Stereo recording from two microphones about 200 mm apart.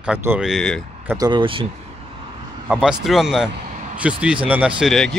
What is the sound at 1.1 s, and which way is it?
Speech, 20° right (ahead or behind).